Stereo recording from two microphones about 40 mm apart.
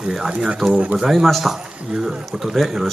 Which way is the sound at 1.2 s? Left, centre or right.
Centre.